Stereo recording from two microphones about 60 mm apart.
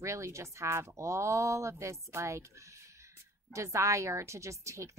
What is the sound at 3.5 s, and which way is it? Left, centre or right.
A woman's voice, right.